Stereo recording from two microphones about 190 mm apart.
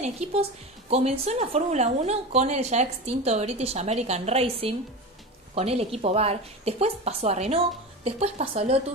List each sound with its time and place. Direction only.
0.0 s a woman's voice: 35° right (ahead or behind)